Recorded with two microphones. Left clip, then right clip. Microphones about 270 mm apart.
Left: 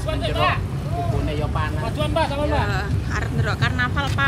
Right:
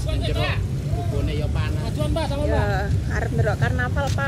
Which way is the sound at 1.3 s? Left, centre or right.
Centre.